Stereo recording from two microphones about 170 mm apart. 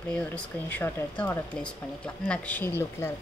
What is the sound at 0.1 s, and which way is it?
Speech, 10° left (ahead or behind).